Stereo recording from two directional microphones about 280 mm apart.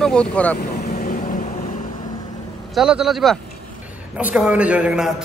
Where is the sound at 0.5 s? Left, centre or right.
Left.